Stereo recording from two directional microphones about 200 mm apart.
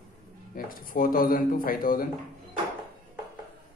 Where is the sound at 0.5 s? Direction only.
45° left (ahead or behind).